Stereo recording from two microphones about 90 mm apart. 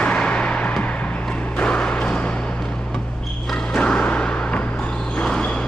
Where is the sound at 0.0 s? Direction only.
10° left (ahead or behind).